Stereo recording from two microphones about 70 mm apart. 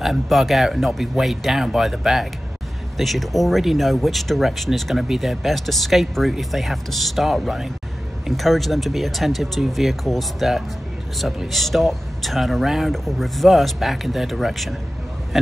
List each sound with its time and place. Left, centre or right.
0.0 s speech: centre